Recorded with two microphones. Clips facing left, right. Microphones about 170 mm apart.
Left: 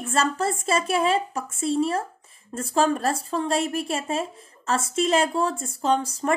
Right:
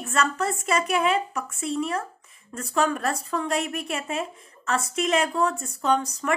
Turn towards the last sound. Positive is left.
turn(degrees=30)  # may be behind; listen again after turning